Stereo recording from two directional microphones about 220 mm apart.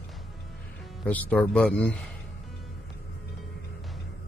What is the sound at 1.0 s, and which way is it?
Speech, 5° left (ahead or behind).